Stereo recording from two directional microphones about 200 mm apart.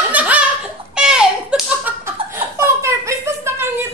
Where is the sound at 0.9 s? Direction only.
5° right (ahead or behind).